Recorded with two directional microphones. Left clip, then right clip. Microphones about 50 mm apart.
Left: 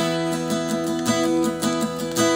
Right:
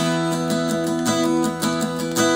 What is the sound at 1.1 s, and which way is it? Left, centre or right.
Music, right.